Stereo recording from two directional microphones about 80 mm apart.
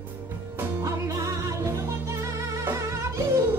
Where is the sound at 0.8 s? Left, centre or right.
Right.